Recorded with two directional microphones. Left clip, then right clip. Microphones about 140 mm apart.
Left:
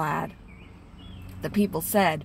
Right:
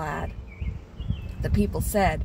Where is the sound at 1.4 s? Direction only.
25° left (ahead or behind).